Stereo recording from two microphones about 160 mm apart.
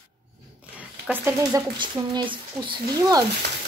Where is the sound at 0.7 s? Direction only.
10° right (ahead or behind).